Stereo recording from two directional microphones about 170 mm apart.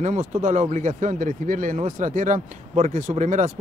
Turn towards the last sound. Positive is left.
turn(degrees=-45)  # may be behind; listen again after turning